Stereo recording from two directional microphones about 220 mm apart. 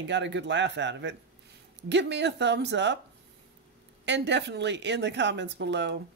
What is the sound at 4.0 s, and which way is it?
Speech, 50° right (ahead or behind).